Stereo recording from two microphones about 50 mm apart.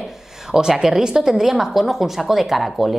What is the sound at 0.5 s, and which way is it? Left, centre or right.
Speech, centre.